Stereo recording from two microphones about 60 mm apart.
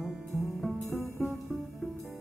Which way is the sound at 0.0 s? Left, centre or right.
Centre.